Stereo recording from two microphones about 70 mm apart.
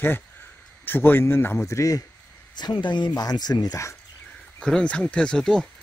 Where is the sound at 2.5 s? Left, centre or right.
Left.